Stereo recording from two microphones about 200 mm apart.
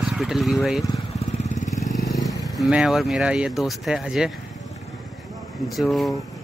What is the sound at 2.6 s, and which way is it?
Speech, 5° right (ahead or behind).